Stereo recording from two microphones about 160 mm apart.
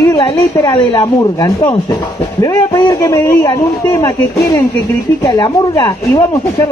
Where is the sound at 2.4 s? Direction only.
20° left (ahead or behind).